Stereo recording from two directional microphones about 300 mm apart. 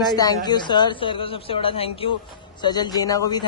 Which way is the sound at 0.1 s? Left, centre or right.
Centre.